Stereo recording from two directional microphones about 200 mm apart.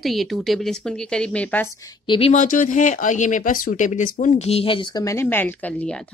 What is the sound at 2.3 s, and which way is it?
A woman's voice, 40° left (ahead or behind).